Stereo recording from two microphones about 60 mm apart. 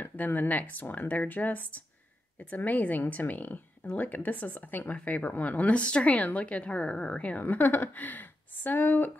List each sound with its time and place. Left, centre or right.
0.0 s speech: left
7.4 s speech: left